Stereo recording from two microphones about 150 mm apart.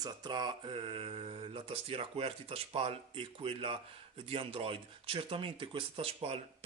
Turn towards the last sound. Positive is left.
turn(degrees=-40)  # may be behind; listen again after turning